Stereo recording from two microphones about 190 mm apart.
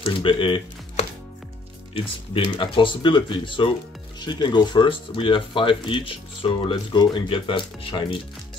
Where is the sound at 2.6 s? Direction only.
25° left (ahead or behind).